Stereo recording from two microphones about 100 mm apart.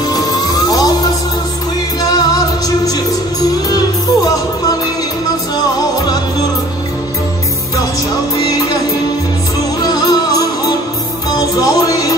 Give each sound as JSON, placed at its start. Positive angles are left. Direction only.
{"t": 0.1, "sound": "music", "side_deg": 40}
{"t": 9.8, "sound": "music", "side_deg": 40}